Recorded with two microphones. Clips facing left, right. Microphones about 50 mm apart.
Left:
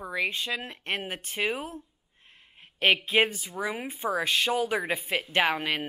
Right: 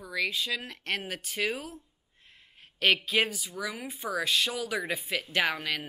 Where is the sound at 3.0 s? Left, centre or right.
Left.